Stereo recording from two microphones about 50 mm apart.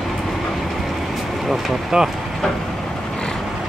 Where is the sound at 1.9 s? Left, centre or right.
Centre.